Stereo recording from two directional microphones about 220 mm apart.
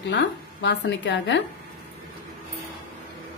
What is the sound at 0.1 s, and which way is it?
A woman's voice, 55° left (ahead or behind).